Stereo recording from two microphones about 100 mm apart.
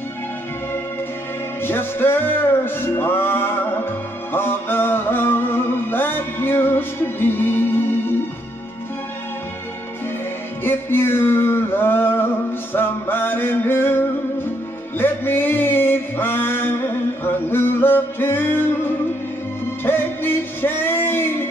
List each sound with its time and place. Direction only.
1.6 s music: 20° left (ahead or behind)
10.6 s male singing: 20° left (ahead or behind)
12.7 s music: 20° left (ahead or behind)
15.0 s a sound: 20° left (ahead or behind)
19.8 s music: 20° left (ahead or behind)